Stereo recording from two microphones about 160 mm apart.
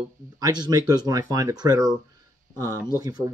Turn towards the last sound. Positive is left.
turn(degrees=-25)  # may be behind; listen again after turning